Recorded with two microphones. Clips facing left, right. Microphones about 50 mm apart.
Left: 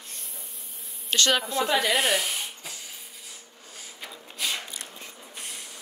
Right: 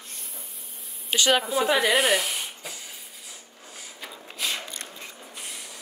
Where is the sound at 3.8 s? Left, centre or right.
Centre.